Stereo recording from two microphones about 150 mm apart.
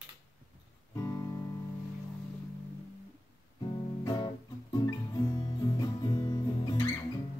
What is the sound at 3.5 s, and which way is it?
Music, 30° left (ahead or behind).